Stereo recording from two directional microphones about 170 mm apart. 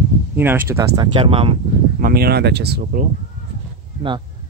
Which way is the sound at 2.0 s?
60° right (ahead or behind).